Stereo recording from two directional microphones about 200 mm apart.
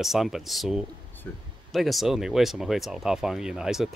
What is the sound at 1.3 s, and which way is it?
Speech, 10° left (ahead or behind).